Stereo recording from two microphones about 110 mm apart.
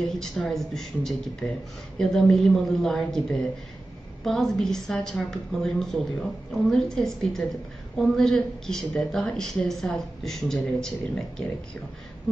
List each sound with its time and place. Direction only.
0.0 s speech: centre (ahead or behind)
4.2 s speech: centre (ahead or behind)